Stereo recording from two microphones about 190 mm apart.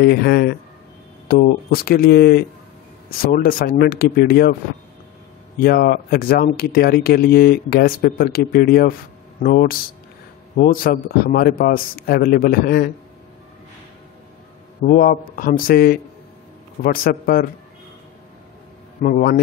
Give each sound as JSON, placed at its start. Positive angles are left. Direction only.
{"t": 0.0, "sound": "speech", "side_deg": 55}
{"t": 5.6, "sound": "speech", "side_deg": 55}
{"t": 14.9, "sound": "speech", "side_deg": 50}
{"t": 19.0, "sound": "speech", "side_deg": 50}